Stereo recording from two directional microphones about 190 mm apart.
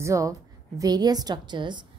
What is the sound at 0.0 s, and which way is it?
A woman's voice, 15° right (ahead or behind).